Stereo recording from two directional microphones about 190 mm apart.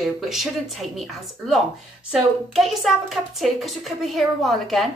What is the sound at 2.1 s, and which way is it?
A woman's voice, centre (ahead or behind).